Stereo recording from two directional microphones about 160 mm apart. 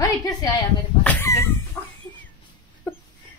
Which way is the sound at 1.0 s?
10° left (ahead or behind).